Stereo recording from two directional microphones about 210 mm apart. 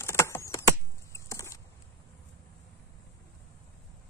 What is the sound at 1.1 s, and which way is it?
Walk, 15° left (ahead or behind).